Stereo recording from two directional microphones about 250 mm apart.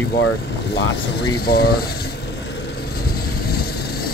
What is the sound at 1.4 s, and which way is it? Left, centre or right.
Speech, left.